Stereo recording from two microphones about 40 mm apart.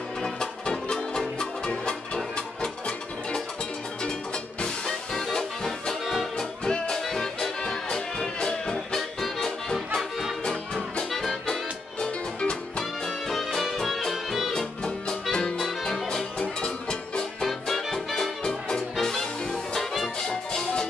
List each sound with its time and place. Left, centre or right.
0.2 s music: centre
4.0 s music: left
8.7 s music: centre
11.1 s music: centre
12.0 s music: left
13.0 s music: centre
14.5 s music: centre
16.3 s music: left
17.2 s music: centre
17.9 s music: centre